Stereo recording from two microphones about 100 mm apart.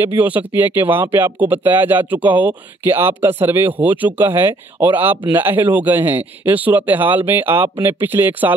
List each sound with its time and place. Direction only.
0.0 s speech: 20° right (ahead or behind)